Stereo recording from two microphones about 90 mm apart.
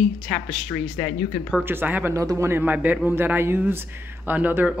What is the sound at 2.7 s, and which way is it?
Speech, 15° right (ahead or behind).